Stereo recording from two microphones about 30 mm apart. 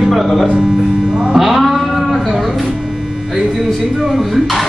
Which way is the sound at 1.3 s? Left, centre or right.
Centre.